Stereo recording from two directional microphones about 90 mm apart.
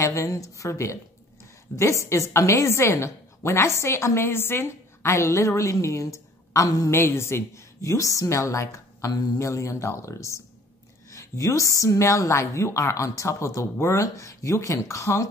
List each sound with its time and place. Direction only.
0.0 s a woman's voice: 35° left (ahead or behind)
9.1 s a woman's voice: 45° left (ahead or behind)